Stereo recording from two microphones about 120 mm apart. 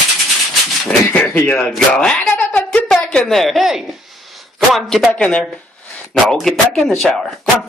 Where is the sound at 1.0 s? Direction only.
20° left (ahead or behind).